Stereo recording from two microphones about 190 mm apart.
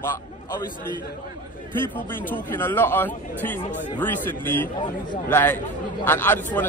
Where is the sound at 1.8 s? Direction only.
10° left (ahead or behind).